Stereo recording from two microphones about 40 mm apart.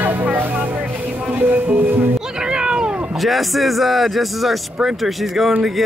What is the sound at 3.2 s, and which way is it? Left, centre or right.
Speech, centre.